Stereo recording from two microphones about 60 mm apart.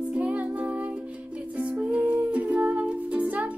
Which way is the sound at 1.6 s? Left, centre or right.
Right.